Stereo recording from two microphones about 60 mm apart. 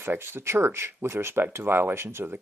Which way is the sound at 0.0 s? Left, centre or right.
Right.